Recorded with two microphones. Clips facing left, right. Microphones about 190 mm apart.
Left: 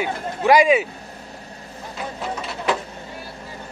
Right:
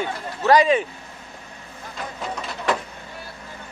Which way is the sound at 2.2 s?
Centre (ahead or behind).